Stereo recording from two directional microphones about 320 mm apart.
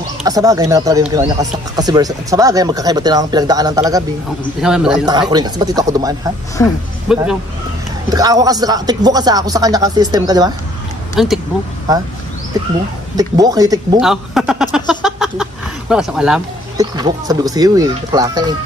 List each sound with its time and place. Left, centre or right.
0.2 s a man's voice: centre
5.3 s speech: centre
6.6 s speech: centre
7.1 s a man's voice: centre
11.2 s a man's voice: centre
13.1 s speech: centre
14.0 s a sound: centre
15.9 s speech: centre
16.9 s speech: centre